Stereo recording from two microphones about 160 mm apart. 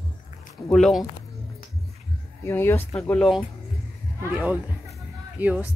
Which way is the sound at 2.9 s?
5° left (ahead or behind).